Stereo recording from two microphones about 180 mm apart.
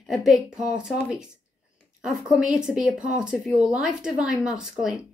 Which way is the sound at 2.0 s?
5° right (ahead or behind).